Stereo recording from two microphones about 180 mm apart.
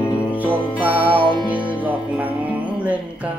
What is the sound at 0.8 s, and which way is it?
Music, 10° right (ahead or behind).